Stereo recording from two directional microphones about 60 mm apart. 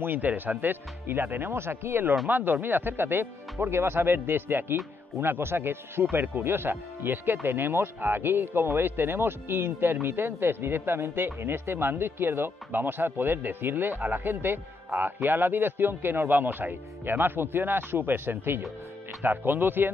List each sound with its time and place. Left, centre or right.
0.0 s a man's voice: right
2.2 s a man's voice: right